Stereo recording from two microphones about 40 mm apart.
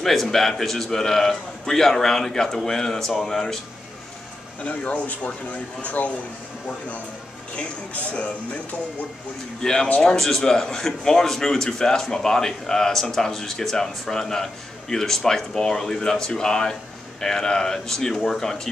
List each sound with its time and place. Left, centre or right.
0.0 s a man's voice: centre
4.6 s speech: left
7.5 s speech: left
9.6 s a man's voice: centre